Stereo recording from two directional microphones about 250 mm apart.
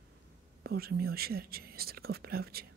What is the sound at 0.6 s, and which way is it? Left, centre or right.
Speech, right.